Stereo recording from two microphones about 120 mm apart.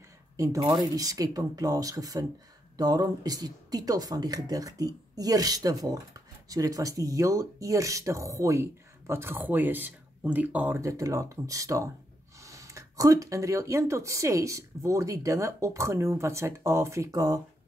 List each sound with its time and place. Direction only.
0.9 s speech: 30° right (ahead or behind); by 10.8 s 15° right (ahead or behind)
10.8 s speech: 25° right (ahead or behind)